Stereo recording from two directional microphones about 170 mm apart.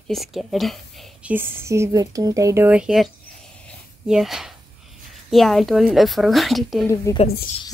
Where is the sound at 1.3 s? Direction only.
15° right (ahead or behind).